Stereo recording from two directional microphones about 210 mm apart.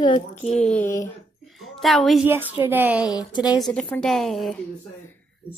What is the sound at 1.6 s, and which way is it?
A woman's voice, centre (ahead or behind).